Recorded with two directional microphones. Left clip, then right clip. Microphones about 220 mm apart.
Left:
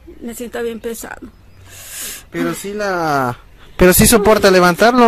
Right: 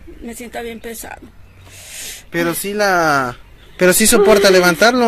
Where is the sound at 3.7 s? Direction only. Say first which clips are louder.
Left 1 dB; 45° left (ahead or behind).